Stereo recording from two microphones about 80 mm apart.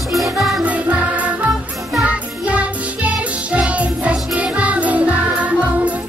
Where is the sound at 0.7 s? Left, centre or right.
Centre.